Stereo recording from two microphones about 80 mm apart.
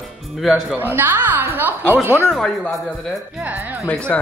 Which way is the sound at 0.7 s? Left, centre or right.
Right.